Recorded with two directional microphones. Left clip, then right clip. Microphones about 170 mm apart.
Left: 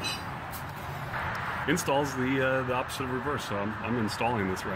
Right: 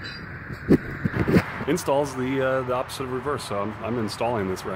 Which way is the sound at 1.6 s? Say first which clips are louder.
Right 4 dB; 20° right (ahead or behind).